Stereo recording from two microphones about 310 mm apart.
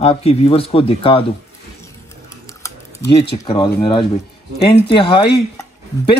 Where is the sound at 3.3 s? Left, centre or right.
Centre.